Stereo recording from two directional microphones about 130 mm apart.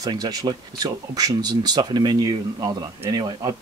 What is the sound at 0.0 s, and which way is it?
Speech, 30° right (ahead or behind).